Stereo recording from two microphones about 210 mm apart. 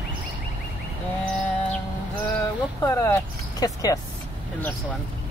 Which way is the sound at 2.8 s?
15° left (ahead or behind).